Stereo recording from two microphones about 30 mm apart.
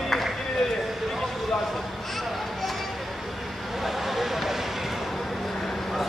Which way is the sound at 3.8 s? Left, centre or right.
Centre.